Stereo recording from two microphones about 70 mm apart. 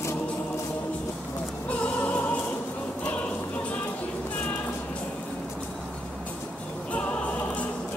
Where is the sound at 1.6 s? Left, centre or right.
Centre.